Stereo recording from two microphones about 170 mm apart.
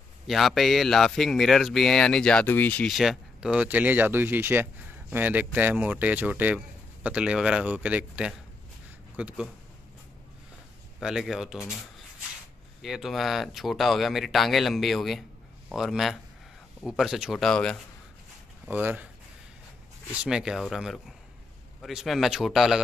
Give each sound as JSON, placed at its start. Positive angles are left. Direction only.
{"t": 0.3, "sound": "speech", "side_deg": 0}
{"t": 2.9, "sound": "speech", "side_deg": 0}
{"t": 11.0, "sound": "speech", "side_deg": -5}
{"t": 12.8, "sound": "speech", "side_deg": 0}
{"t": 18.7, "sound": "speech", "side_deg": -10}
{"t": 20.1, "sound": "speech", "side_deg": -5}